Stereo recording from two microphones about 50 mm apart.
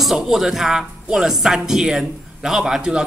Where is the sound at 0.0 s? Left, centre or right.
Centre.